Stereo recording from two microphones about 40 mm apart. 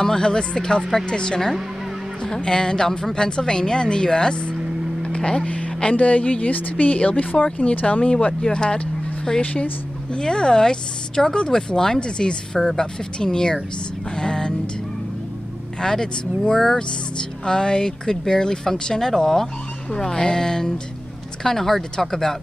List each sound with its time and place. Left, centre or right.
0.0 s speech: centre
9.4 s speech: left
10.1 s speech: left
14.1 s music: centre
15.8 s speech: centre